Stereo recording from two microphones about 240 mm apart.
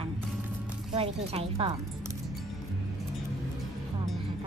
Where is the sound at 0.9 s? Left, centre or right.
Right.